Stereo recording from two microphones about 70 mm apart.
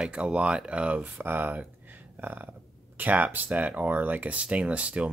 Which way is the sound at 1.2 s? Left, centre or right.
Right.